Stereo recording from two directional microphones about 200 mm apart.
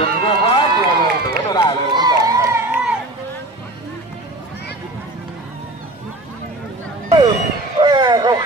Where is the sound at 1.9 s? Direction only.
20° right (ahead or behind).